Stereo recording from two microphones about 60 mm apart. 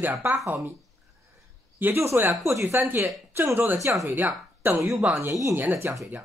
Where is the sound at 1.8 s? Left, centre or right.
Right.